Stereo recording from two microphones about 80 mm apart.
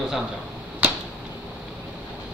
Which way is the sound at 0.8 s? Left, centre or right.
Right.